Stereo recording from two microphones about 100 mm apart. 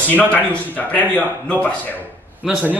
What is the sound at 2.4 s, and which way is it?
Speech, 5° right (ahead or behind).